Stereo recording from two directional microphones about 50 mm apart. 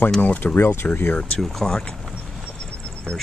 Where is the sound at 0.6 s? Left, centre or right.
Left.